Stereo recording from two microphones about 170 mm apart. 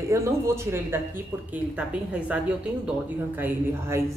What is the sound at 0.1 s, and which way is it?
Speech, 15° right (ahead or behind).